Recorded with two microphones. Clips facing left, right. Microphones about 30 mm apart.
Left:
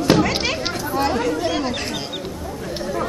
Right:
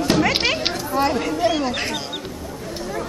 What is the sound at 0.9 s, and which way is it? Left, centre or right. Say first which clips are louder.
Chatter: left 1 dB; centre.